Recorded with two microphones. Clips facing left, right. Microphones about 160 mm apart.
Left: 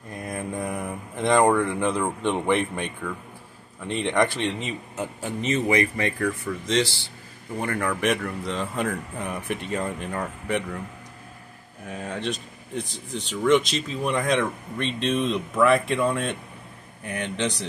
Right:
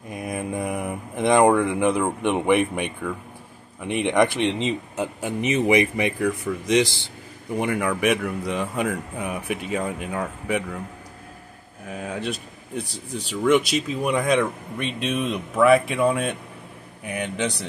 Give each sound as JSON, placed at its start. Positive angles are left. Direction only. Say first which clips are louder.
{"t": 0.1, "sound": "speech", "louder": "right 3 dB", "side_deg": -10}
{"t": 11.9, "sound": "speech", "louder": "right 1 dB", "side_deg": -5}